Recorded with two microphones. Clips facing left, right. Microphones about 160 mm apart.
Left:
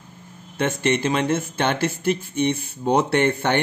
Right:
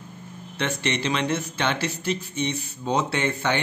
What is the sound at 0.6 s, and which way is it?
Speech, 50° left (ahead or behind).